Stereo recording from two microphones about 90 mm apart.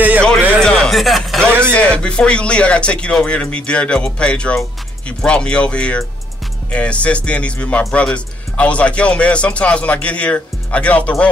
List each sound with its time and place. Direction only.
0.6 s music: 5° left (ahead or behind)
1.7 s speech: 15° left (ahead or behind)